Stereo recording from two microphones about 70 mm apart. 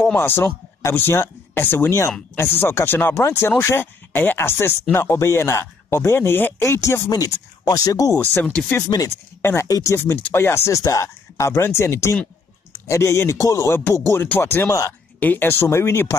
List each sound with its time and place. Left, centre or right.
0.0 s speech: left
7.1 s speech: left
8.9 s speech: left
9.4 s speech: left
9.7 s speech: left
9.9 s speech: left
13.7 s speech: left
15.1 s speech: left